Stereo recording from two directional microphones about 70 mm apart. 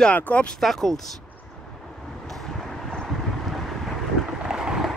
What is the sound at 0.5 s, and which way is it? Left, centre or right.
Speech, centre.